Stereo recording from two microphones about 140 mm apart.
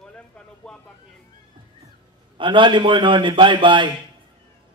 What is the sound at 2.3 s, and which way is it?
A man's voice, 35° right (ahead or behind).